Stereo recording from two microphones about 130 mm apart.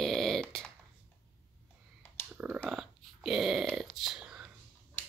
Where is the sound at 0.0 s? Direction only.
Centre (ahead or behind).